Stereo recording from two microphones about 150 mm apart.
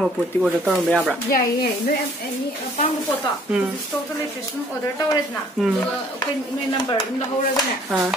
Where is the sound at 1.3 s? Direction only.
80° left.